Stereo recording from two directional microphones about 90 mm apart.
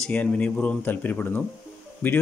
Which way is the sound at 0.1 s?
15° left (ahead or behind).